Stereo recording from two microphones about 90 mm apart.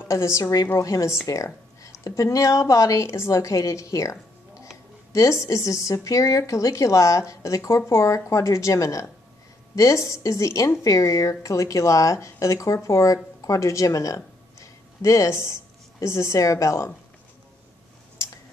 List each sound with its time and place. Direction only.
0.0 s a woman's voice: 35° left (ahead or behind)